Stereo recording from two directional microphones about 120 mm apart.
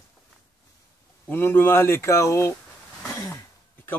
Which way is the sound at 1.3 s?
15° left (ahead or behind).